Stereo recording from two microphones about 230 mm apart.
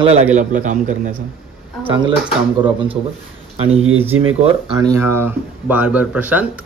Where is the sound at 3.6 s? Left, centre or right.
Right.